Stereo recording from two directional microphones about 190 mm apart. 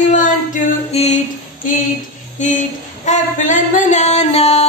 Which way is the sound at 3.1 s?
40° left (ahead or behind).